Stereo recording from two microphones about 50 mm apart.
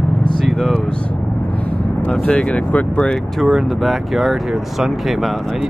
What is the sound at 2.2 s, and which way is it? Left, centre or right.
Speech, left.